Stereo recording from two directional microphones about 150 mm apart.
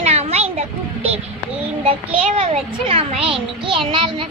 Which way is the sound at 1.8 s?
40° right (ahead or behind).